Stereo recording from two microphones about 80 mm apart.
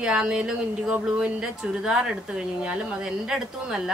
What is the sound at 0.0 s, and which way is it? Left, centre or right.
A woman's voice, centre.